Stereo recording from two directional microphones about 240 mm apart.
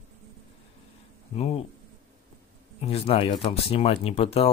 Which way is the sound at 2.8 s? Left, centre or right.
Left.